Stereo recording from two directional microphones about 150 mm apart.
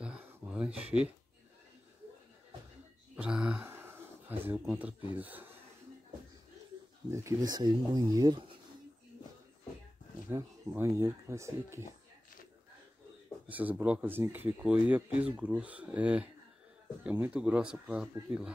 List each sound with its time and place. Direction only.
0.0 s a sound: 5° right (ahead or behind)
0.8 s speech: 10° right (ahead or behind)
3.2 s speech: 5° right (ahead or behind)
7.1 s speech: 20° right (ahead or behind)
10.3 s speech: 15° right (ahead or behind)
13.5 s speech: 10° right (ahead or behind)